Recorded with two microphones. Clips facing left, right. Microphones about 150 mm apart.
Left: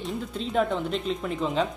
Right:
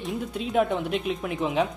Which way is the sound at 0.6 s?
15° right (ahead or behind).